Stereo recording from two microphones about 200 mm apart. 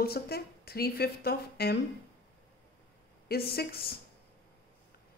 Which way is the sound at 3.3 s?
50° left (ahead or behind).